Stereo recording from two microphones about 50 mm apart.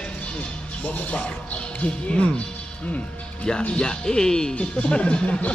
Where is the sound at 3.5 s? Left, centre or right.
Centre.